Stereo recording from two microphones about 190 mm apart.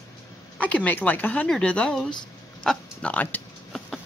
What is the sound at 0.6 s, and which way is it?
Speech, 10° left (ahead or behind).